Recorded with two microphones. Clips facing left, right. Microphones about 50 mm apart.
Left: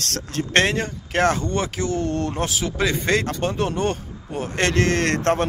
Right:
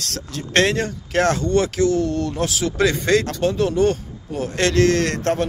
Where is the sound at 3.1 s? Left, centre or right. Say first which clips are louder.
Right 3 dB; left.